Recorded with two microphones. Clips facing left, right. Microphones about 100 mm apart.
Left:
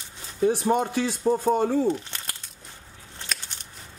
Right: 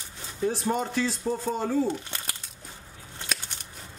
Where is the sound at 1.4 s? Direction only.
55° left (ahead or behind).